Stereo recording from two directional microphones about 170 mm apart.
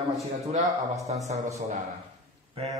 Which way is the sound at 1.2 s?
45° right (ahead or behind).